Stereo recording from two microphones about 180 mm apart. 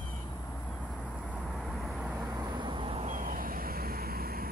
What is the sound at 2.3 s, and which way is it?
Vehicle, 20° right (ahead or behind).